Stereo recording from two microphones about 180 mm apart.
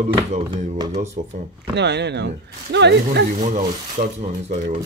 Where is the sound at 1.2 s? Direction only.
50° right (ahead or behind).